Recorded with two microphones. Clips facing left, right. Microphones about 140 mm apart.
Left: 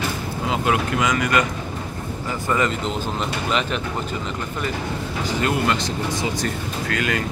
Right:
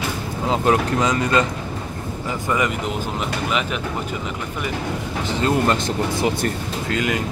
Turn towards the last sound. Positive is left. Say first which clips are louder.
# right 1 dB
turn(degrees=-20)  # may be behind; listen again after turning